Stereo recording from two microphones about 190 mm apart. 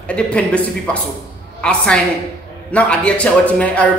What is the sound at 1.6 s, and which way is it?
A man's voice, 5° left (ahead or behind).